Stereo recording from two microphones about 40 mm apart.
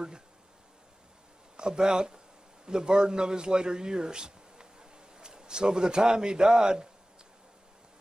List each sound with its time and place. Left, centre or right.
1.6 s a man's voice: centre